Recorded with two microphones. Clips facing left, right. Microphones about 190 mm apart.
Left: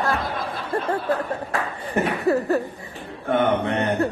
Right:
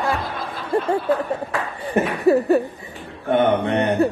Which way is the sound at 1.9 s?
15° right (ahead or behind).